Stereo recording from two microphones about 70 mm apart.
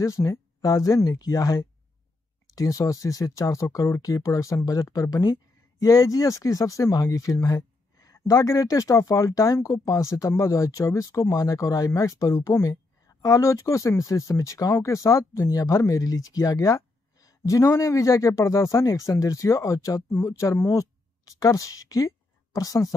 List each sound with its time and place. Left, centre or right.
0.0 s a woman's voice: left